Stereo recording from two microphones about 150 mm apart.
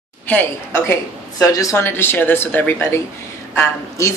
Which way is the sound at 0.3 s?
15° left (ahead or behind).